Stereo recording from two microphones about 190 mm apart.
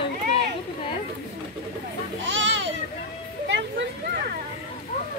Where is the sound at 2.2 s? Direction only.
80° right.